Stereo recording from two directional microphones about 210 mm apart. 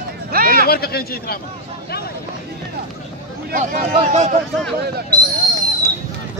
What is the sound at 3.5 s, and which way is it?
Speech, 40° right (ahead or behind).